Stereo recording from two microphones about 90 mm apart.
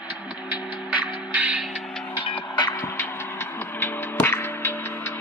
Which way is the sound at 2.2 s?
60° left (ahead or behind).